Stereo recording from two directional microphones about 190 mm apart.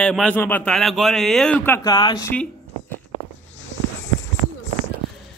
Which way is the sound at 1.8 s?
20° left (ahead or behind).